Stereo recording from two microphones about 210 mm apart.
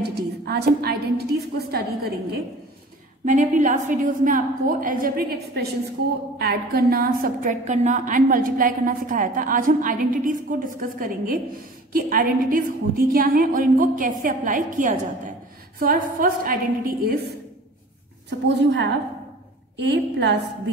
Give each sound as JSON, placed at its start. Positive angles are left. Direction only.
{"t": 0.0, "sound": "a woman's voice", "side_deg": -50}
{"t": 3.3, "sound": "a woman's voice", "side_deg": -35}
{"t": 18.6, "sound": "a woman's voice", "side_deg": -55}